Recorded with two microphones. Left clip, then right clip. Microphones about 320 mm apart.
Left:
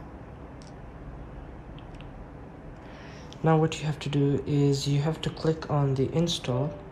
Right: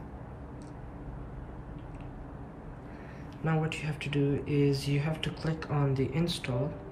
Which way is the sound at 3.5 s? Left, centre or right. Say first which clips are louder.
Left 8 dB; centre.